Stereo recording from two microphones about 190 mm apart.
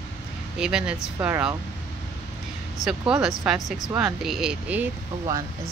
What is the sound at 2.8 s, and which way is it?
Speech, centre (ahead or behind).